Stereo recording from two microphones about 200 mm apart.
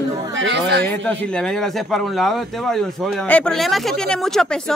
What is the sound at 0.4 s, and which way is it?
Speech, 60° right (ahead or behind).